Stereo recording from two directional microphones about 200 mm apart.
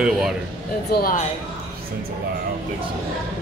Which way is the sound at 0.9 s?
45° left (ahead or behind).